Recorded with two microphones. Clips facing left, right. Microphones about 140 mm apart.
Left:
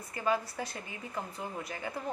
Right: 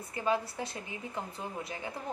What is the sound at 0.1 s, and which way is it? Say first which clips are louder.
A woman's voice: even; 20° right (ahead or behind).